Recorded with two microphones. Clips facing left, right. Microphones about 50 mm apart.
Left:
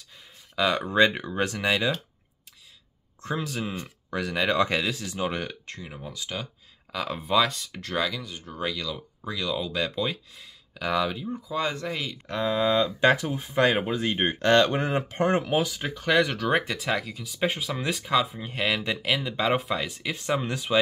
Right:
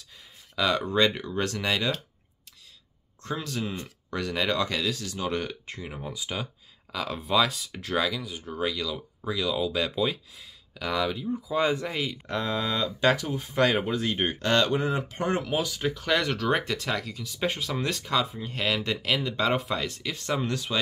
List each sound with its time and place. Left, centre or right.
0.6 s speech: centre
0.8 s speech: left
3.2 s speech: centre
4.6 s speech: left
5.7 s speech: centre
6.9 s speech: centre
11.5 s speech: centre
12.4 s speech: centre
20.0 s speech: centre